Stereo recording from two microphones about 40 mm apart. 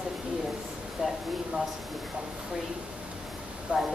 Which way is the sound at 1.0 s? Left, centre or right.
Centre.